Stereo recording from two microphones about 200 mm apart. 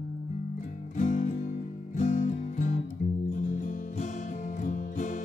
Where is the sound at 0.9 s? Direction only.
40° left (ahead or behind).